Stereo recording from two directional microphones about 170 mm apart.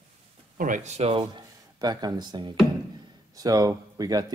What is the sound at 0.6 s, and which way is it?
Speech, 50° right (ahead or behind).